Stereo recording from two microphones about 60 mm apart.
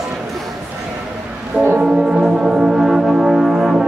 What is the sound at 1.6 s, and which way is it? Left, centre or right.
Brass instrument, right.